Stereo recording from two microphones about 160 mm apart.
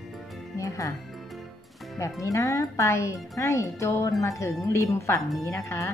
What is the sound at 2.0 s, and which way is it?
Speech, 20° left (ahead or behind).